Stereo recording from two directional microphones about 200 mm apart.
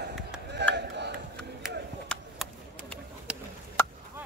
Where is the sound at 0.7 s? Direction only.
55° right (ahead or behind).